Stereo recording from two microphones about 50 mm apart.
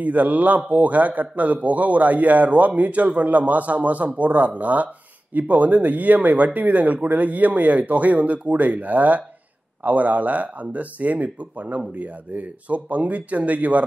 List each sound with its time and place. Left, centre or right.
0.0 s a man's voice: right